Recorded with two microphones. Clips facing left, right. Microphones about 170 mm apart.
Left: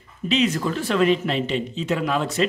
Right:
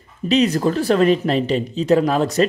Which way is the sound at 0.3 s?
40° right (ahead or behind).